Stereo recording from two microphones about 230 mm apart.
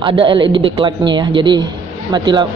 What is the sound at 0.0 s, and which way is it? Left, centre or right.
Speech, right.